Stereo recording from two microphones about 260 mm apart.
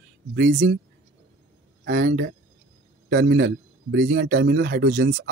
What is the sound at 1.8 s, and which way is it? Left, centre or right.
A man's voice, right.